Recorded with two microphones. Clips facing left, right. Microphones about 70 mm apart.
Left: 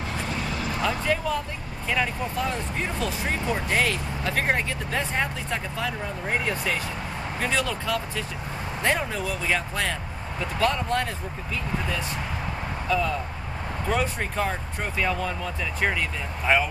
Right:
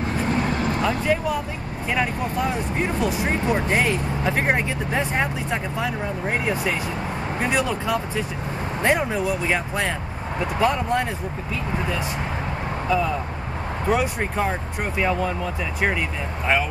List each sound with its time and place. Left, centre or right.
0.4 s vehicle: right
0.8 s speech: centre
12.9 s speech: centre